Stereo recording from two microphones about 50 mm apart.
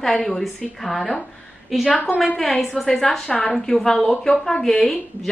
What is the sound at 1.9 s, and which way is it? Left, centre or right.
Speech, left.